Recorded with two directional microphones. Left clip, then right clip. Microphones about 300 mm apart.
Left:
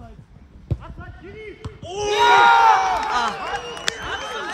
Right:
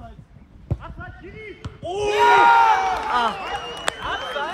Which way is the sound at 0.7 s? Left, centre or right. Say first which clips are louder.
Right 2 dB; centre.